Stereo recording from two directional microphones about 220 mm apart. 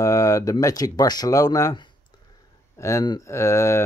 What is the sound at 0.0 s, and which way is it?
Speech, 15° left (ahead or behind).